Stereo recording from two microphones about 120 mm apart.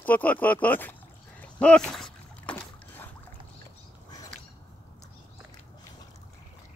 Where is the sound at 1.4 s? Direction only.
10° left (ahead or behind).